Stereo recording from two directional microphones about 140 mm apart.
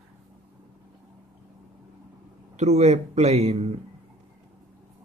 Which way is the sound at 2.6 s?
50° right (ahead or behind).